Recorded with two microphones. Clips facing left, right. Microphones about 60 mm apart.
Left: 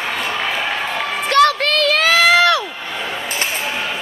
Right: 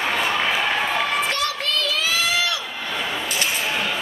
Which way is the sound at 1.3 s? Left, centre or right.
Left.